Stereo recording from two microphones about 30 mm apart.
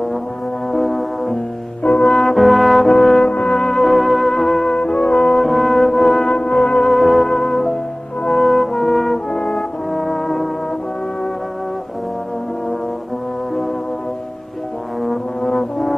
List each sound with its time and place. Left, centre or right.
0.7 s brass instrument: centre
3.3 s music: left
3.5 s music: centre
4.7 s music: centre
5.4 s music: centre
6.2 s music: left
6.8 s music: centre
8.3 s brass instrument: centre
9.3 s brass instrument: centre
9.6 s brass instrument: centre
15.0 s brass instrument: centre